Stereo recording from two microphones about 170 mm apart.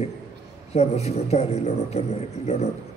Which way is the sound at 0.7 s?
40° left (ahead or behind).